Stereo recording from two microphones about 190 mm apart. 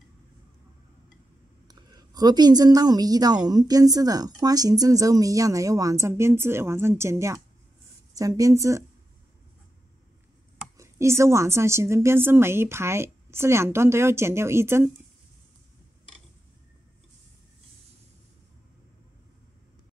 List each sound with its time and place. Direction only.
1.7 s a woman's voice: 20° right (ahead or behind)
10.8 s a woman's voice: 15° right (ahead or behind)